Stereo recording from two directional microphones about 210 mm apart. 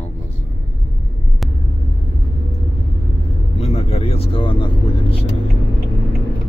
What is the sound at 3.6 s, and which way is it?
Speech, 30° left (ahead or behind).